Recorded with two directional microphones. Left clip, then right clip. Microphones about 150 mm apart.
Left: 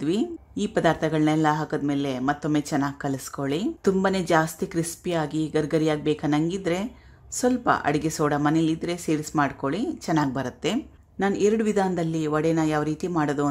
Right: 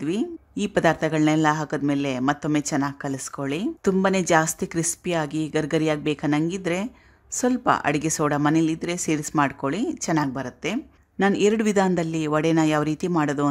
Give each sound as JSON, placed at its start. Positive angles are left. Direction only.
{"t": 0.6, "sound": "a man's voice", "side_deg": -15}
{"t": 11.1, "sound": "a man's voice", "side_deg": -15}